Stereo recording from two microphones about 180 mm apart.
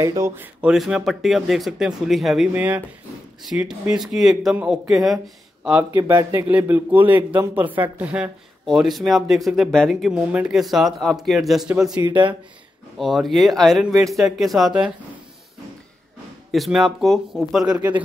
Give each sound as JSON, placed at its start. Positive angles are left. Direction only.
{"t": 0.0, "sound": "a man's voice", "side_deg": -15}
{"t": 11.9, "sound": "speech", "side_deg": -25}
{"t": 13.0, "sound": "a man's voice", "side_deg": 0}
{"t": 16.5, "sound": "a man's voice", "side_deg": 0}